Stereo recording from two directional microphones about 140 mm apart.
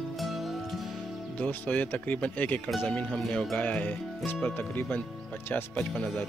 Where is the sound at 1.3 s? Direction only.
10° left (ahead or behind).